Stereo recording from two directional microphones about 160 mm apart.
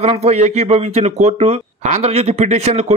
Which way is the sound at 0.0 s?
40° right (ahead or behind).